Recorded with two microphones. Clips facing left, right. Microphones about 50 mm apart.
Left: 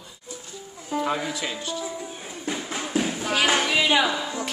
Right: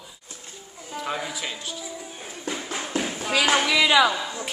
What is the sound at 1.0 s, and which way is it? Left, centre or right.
Speech, centre.